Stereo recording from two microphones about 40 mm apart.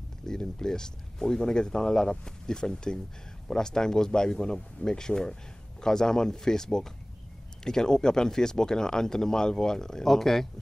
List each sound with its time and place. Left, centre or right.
0.3 s speech: centre